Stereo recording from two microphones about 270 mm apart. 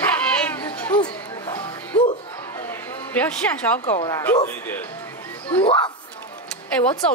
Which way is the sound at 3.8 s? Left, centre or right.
Left.